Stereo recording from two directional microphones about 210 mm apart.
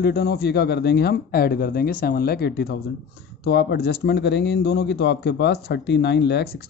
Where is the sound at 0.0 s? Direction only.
50° left (ahead or behind).